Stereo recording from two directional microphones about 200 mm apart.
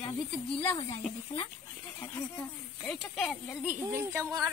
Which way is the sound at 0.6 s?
10° left (ahead or behind).